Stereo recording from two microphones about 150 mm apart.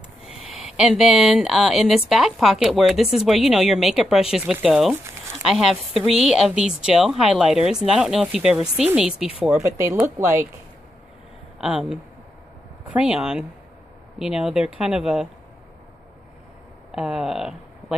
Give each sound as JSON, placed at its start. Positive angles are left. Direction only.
{"t": 0.2, "sound": "a woman's voice", "side_deg": -5}
{"t": 9.6, "sound": "speech", "side_deg": -15}
{"t": 11.5, "sound": "a woman's voice", "side_deg": -5}
{"t": 16.9, "sound": "speech", "side_deg": -5}